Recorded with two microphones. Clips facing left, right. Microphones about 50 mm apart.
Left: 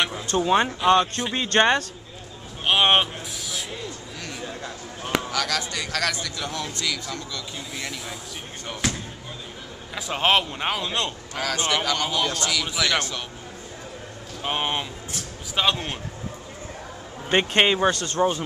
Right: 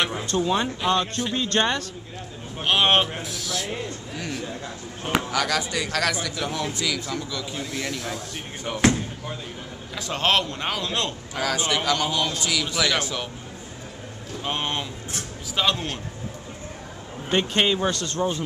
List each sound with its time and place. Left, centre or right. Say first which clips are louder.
0.4 s speech: left 4 dB; left
1.3 s speech: left 4 dB; left
2.6 s a man's voice: left 1 dB; centre
5.3 s a man's voice: right 2 dB; centre
7.7 s a man's voice: right 3 dB; centre
9.9 s a man's voice: left 1 dB; centre
14.4 s speech: left 2 dB; centre
17.3 s speech: left 2 dB; left